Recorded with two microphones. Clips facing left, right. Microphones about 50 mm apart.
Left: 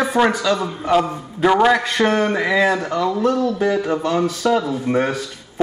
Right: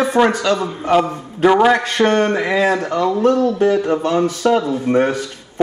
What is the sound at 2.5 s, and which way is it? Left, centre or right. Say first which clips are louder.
Speech: right 1 dB; right.